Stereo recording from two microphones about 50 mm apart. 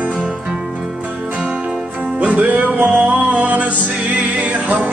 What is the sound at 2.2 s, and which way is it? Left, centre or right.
Music, right.